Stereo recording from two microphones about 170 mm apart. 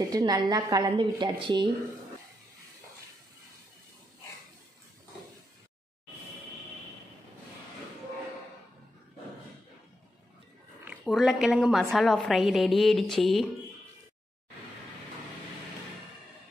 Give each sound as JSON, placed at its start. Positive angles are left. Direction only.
{"t": 0.1, "sound": "a woman's voice", "side_deg": -25}
{"t": 10.9, "sound": "a woman's voice", "side_deg": 0}